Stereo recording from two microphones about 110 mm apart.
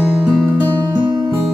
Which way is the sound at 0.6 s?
40° right (ahead or behind).